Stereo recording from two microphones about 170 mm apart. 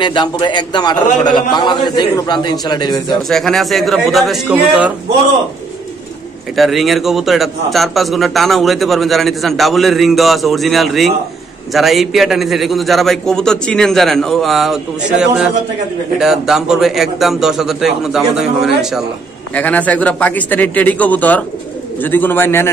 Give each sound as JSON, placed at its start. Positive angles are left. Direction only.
{"t": 0.0, "sound": "a man's voice", "side_deg": 25}
{"t": 3.2, "sound": "a man's voice", "side_deg": 0}
{"t": 6.5, "sound": "a man's voice", "side_deg": 0}
{"t": 19.5, "sound": "a man's voice", "side_deg": 10}